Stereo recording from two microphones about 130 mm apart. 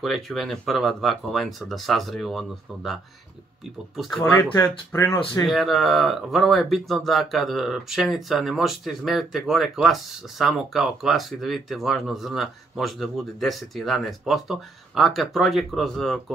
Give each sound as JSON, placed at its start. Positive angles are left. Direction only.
{"t": 0.0, "sound": "speech", "side_deg": 0}
{"t": 4.2, "sound": "speech", "side_deg": 20}
{"t": 5.4, "sound": "speech", "side_deg": 0}